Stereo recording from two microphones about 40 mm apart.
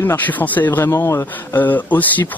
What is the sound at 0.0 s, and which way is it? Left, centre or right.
A man's voice, left.